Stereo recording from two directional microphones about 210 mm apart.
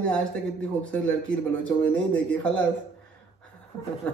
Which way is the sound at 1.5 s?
5° left (ahead or behind).